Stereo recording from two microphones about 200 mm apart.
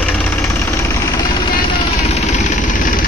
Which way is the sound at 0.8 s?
15° left (ahead or behind).